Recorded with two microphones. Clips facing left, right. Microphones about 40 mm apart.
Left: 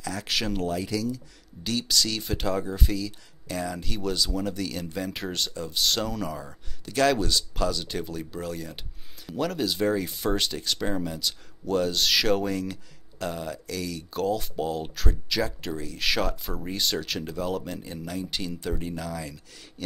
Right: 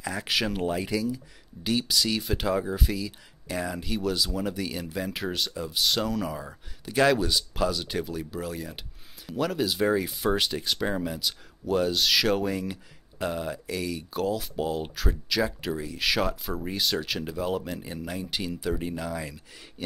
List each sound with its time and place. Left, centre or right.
0.0 s speech: centre
0.3 s speech: centre
0.6 s speech: centre
14.1 s speech: centre